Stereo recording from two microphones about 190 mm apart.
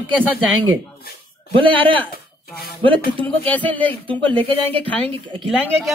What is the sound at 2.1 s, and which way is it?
Speech, 50° left (ahead or behind).